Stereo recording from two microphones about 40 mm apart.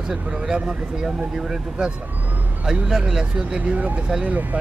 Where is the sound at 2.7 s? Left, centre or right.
Centre.